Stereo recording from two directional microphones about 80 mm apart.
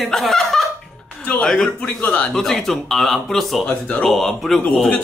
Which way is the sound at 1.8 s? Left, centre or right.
Centre.